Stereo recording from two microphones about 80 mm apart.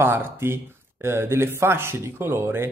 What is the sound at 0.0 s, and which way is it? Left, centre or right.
Speech, right.